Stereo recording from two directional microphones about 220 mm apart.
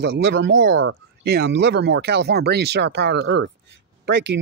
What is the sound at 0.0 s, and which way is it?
Speech, 50° right (ahead or behind).